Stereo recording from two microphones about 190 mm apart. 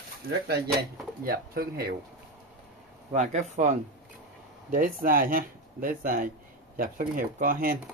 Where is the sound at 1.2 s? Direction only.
50° right (ahead or behind).